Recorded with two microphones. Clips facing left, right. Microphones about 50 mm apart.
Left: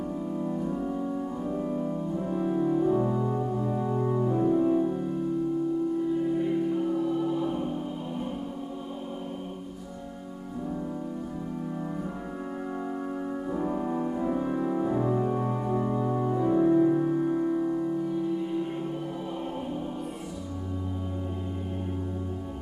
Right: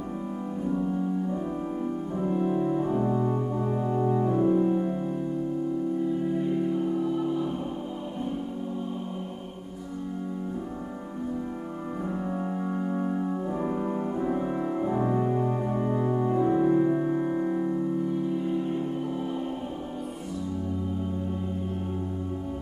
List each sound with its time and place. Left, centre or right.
2.4 s music: centre
4.2 s music: right
4.5 s music: centre
13.6 s music: centre
15.9 s music: right
16.3 s music: right